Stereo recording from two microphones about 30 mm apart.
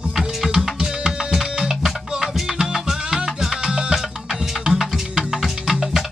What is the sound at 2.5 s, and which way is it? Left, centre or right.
Music, right.